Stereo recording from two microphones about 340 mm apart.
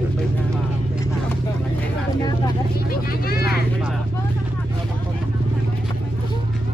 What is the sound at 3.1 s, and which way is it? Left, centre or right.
Speech, left.